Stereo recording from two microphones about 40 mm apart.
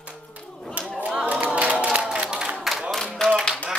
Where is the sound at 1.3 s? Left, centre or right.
Right.